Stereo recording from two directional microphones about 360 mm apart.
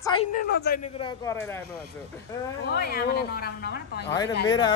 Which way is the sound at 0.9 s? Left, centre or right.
Centre.